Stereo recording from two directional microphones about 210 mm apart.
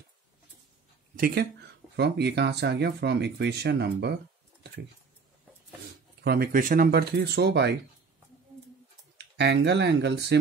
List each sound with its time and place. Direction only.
1.1 s speech: 45° right (ahead or behind)
6.2 s speech: 45° right (ahead or behind)
9.2 s speech: 50° right (ahead or behind)